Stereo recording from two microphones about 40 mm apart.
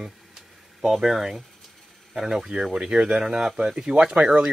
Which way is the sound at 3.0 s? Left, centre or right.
Centre.